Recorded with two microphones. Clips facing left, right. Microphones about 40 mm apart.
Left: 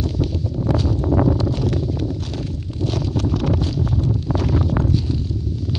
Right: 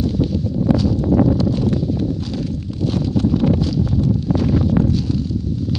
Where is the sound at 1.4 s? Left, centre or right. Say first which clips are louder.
Right 4 dB; left.